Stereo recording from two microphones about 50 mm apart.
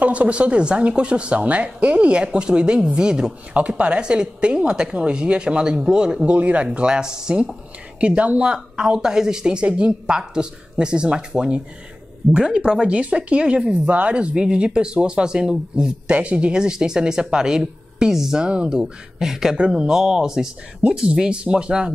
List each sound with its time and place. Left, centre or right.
0.0 s speech: right
6.3 s speech: right; by 19.5 s centre
19.5 s speech: centre